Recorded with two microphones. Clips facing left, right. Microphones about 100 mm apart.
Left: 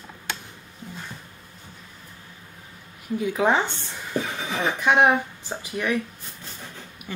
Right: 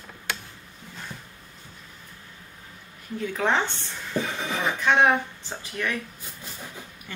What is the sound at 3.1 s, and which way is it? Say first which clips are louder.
Speech: left 4 dB; 10° left (ahead or behind).